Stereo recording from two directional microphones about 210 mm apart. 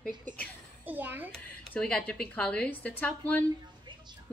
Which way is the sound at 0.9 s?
10° right (ahead or behind).